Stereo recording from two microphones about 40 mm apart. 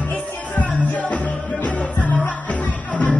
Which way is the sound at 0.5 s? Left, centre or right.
Left.